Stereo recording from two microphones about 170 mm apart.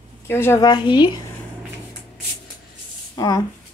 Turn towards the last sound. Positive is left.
turn(degrees=20)  # may be behind; listen again after turning